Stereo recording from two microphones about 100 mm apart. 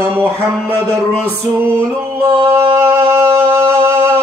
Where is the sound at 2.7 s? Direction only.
25° right (ahead or behind).